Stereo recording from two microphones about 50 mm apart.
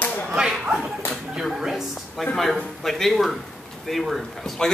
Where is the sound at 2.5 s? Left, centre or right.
Centre.